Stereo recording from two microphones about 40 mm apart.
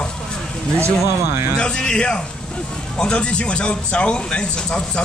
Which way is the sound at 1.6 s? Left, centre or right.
Left.